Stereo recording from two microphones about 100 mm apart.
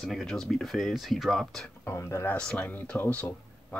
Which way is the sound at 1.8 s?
25° left (ahead or behind).